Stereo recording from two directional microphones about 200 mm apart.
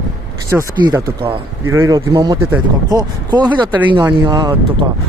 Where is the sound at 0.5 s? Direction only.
20° right (ahead or behind).